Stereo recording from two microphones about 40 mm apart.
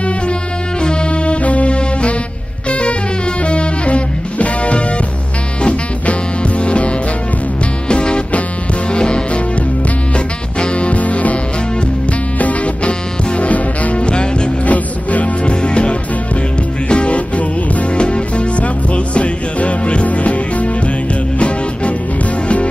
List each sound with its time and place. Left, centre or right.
0.8 s music: left
7.9 s music: left
10.1 s music: left
12.4 s music: left
14.0 s music: left
14.7 s music: left